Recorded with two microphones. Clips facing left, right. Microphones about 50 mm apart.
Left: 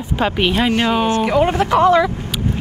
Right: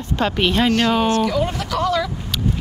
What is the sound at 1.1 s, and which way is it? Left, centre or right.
Speech, left.